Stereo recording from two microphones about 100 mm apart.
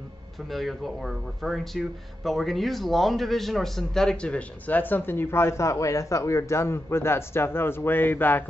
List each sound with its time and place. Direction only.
0.5 s speech: centre (ahead or behind); by 8.5 s 20° left (ahead or behind)